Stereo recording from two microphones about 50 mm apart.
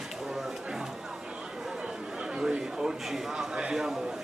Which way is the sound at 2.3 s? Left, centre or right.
Centre.